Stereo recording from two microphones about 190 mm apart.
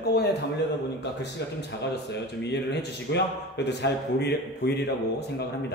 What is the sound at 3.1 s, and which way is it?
A man's voice, 65° left (ahead or behind).